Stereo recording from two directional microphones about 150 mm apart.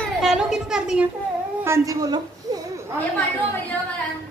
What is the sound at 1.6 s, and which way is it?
Speech, 20° right (ahead or behind).